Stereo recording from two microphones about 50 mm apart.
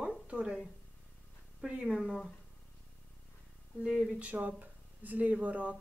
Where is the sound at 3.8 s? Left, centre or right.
Centre.